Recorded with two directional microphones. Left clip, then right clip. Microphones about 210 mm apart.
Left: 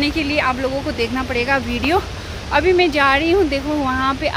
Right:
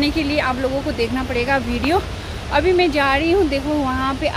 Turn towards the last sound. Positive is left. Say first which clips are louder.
# left 2 dB
turn(degrees=20)  # may be behind; listen again after turning